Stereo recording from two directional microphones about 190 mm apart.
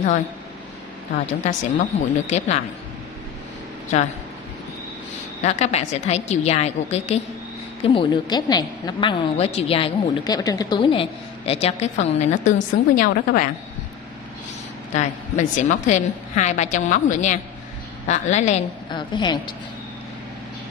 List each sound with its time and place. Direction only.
1.1 s a woman's voice: 40° left (ahead or behind)
5.4 s a woman's voice: 35° left (ahead or behind)
15.0 s a woman's voice: 40° left (ahead or behind)
18.9 s a woman's voice: 25° left (ahead or behind)